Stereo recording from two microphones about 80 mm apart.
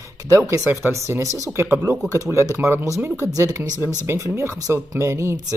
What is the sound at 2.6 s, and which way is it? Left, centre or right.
Speech, right.